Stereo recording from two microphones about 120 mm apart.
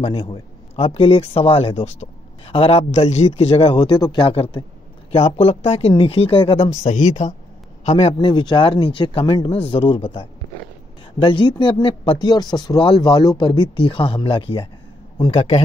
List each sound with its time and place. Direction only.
0.0 s a man's voice: 50° left (ahead or behind)
6.8 s speech: 70° left (ahead or behind)
7.8 s speech: 60° left (ahead or behind); by 14.7 s 45° left (ahead or behind)
15.3 s a man's voice: 60° left (ahead or behind)